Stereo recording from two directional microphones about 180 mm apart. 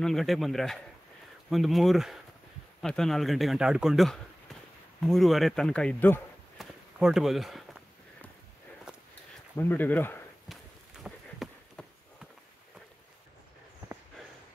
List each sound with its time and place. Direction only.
0.0 s a man's voice: centre (ahead or behind)
6.6 s speech: centre (ahead or behind)
9.6 s speech: 10° left (ahead or behind)
11.1 s a sound: centre (ahead or behind)